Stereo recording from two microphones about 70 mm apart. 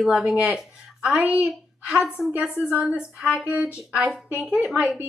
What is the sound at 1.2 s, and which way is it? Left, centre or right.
Speech, right.